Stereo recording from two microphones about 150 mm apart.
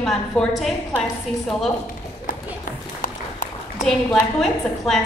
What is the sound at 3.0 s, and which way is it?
Applause, 65° left (ahead or behind).